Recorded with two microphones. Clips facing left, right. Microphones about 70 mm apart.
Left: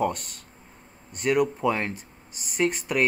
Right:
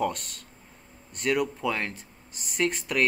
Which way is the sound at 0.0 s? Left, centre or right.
Centre.